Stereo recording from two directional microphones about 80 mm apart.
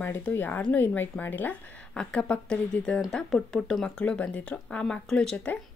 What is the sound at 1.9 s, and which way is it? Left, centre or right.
A woman's voice, centre.